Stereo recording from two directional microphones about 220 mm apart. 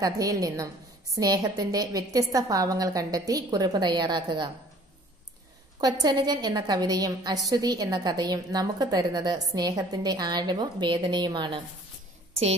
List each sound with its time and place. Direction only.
0.0 s a woman's voice: 15° right (ahead or behind)
5.8 s a woman's voice: 15° right (ahead or behind)